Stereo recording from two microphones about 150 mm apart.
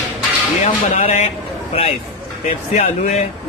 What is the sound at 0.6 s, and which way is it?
Speech, 50° left (ahead or behind).